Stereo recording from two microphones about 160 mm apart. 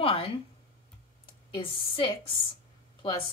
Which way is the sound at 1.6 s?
35° left (ahead or behind).